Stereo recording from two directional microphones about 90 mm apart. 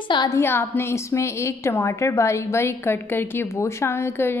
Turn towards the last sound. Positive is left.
turn(degrees=25)  # may be behind; listen again after turning